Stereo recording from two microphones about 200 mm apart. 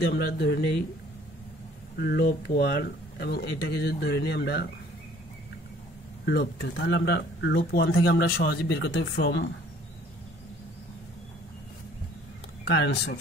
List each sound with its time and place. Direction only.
0.0 s speech: 55° left (ahead or behind)
2.0 s speech: 50° left (ahead or behind)
6.2 s speech: 55° left (ahead or behind)
12.6 s speech: 60° left (ahead or behind)